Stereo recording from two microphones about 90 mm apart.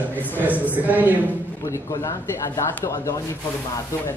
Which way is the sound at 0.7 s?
20° right (ahead or behind).